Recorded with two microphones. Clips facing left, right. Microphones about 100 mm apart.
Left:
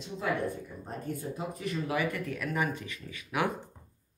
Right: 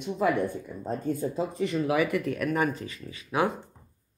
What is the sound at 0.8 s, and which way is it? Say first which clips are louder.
Speech: right 9 dB; 90° right.